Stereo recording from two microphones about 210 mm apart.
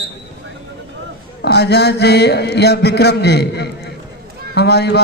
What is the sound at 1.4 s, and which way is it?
A man's voice, 50° left (ahead or behind).